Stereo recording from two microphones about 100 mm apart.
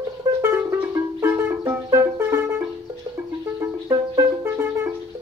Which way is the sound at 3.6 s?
35° right (ahead or behind).